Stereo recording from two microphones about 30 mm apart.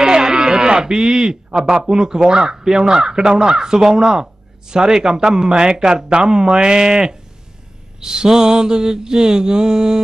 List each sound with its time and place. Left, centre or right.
0.0 s music: right
1.6 s speech: centre